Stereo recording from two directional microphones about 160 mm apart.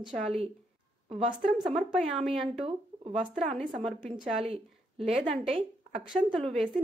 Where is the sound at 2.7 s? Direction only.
35° right (ahead or behind).